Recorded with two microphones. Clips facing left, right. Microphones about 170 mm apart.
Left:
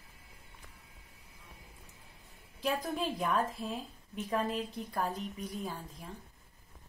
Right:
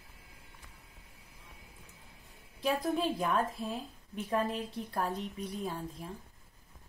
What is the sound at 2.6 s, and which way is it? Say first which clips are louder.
A woman's voice: right 3 dB; centre (ahead or behind).